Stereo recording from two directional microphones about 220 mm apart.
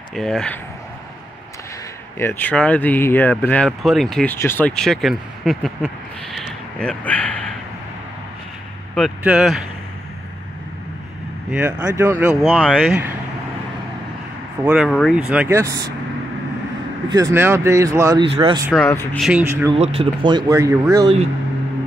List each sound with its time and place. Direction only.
0.1 s speech: centre (ahead or behind)
2.1 s speech: 10° left (ahead or behind)
6.3 s a sound: 5° left (ahead or behind)
8.9 s speech: 5° right (ahead or behind)
11.5 s speech: 10° right (ahead or behind)
14.6 s speech: 5° right (ahead or behind)
17.1 s speech: 10° right (ahead or behind)
18.9 s speech: 10° left (ahead or behind)
19.2 s speech: 10° right (ahead or behind)
19.8 s speech: 25° right (ahead or behind)